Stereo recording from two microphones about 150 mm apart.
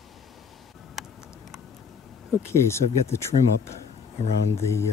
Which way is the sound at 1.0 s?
Centre (ahead or behind).